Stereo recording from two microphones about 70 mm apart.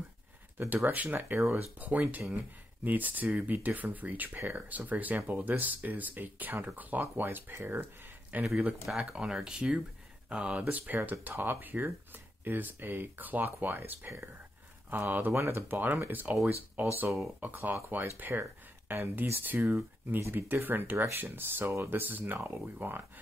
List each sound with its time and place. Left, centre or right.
0.8 s speech: right
1.8 s speech: right
8.8 s speech: centre; by 23.0 s right